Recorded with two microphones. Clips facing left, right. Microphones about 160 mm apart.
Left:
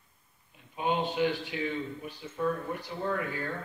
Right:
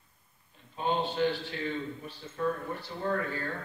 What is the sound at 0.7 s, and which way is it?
A man's voice, 15° left (ahead or behind).